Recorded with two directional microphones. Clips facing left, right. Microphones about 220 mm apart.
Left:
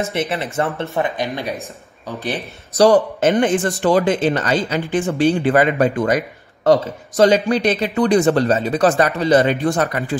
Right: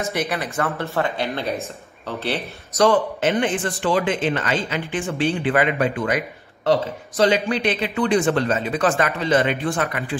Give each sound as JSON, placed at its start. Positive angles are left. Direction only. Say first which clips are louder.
{"t": 0.1, "sound": "speech", "louder": "left 3 dB", "side_deg": 25}
{"t": 2.7, "sound": "a man's voice", "louder": "left 5 dB", "side_deg": 40}